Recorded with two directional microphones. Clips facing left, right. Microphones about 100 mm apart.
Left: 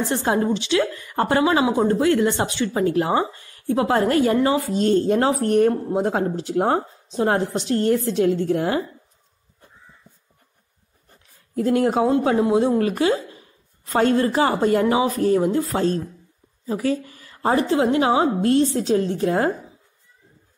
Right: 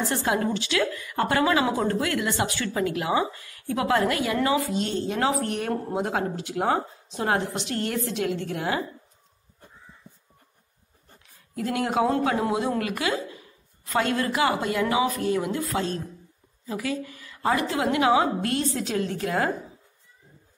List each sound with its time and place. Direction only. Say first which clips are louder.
0.0 s a woman's voice: left 4 dB; 25° left (ahead or behind)
4.6 s a woman's voice: left 9 dB; 45° left (ahead or behind)
11.5 s a woman's voice: left 6 dB; 35° left (ahead or behind)